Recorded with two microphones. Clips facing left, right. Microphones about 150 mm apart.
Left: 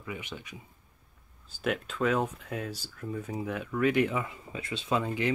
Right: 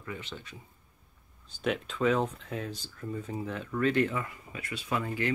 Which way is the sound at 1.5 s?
5° left (ahead or behind).